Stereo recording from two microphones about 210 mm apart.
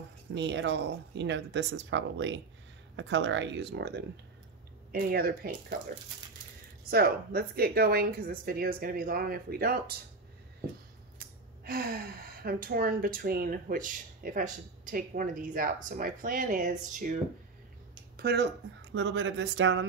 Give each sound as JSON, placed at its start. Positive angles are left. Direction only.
{"t": 0.3, "sound": "speech", "side_deg": -55}
{"t": 6.9, "sound": "speech", "side_deg": -45}
{"t": 11.1, "sound": "speech", "side_deg": -45}
{"t": 18.1, "sound": "speech", "side_deg": -50}